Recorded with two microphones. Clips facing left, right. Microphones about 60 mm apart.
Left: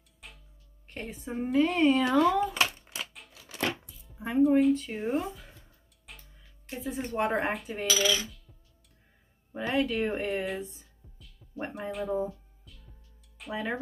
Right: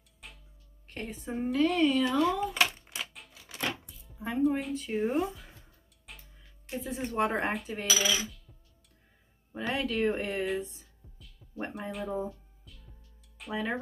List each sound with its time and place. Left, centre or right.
0.2 s music: centre
0.8 s a woman's voice: centre
1.9 s speech: left
2.1 s speech: left
3.8 s music: centre
4.1 s music: centre
4.4 s speech: centre
6.1 s music: centre
6.7 s speech: centre
7.8 s coin: centre
9.5 s speech: centre